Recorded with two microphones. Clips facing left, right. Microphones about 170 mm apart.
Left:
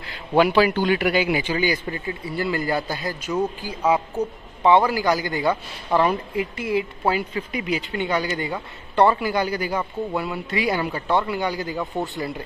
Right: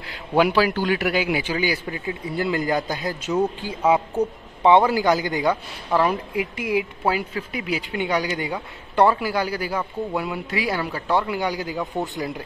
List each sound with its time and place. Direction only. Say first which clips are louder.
0.4 s a woman's voice: left 1 dB; 5° right (ahead or behind)
11.1 s speech: right 1 dB; 10° right (ahead or behind)